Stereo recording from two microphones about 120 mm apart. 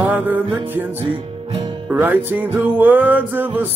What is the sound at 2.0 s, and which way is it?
Music, 15° right (ahead or behind).